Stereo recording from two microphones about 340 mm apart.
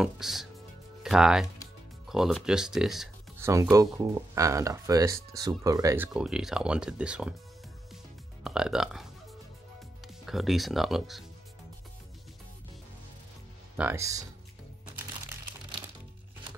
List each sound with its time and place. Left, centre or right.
0.0 s speech: centre
8.5 s speech: centre
13.7 s speech: centre